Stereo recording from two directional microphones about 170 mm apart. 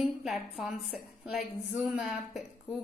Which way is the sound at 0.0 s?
Centre (ahead or behind).